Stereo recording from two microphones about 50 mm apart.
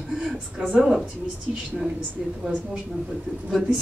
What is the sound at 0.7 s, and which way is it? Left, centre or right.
Speech, centre.